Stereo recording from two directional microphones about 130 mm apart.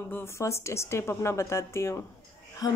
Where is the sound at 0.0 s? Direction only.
20° left (ahead or behind).